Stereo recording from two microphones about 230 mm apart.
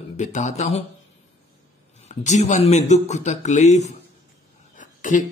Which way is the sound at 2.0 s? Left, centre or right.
Left.